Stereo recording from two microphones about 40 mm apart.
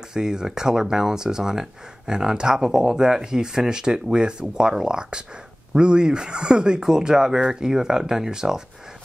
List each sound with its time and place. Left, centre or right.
0.1 s speech: centre